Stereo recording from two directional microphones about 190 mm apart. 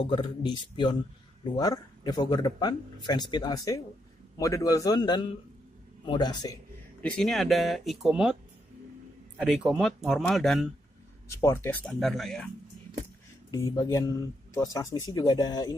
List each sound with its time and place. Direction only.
0.1 s speech: 25° left (ahead or behind)
7.0 s speech: 5° left (ahead or behind)
9.4 s speech: 5° right (ahead or behind)
11.4 s speech: 10° left (ahead or behind)
13.5 s speech: 15° left (ahead or behind)